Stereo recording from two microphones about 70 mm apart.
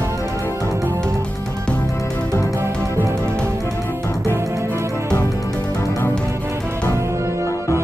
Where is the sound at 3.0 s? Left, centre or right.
Right.